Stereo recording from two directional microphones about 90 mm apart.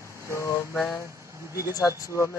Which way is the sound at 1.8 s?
40° left (ahead or behind).